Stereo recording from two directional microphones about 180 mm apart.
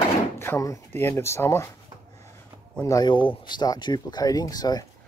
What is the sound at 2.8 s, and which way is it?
Speech, 20° left (ahead or behind).